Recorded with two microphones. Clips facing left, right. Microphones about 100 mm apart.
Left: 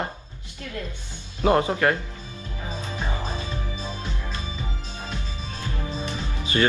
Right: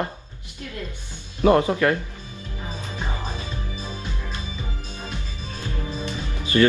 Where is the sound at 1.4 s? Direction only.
25° left (ahead or behind).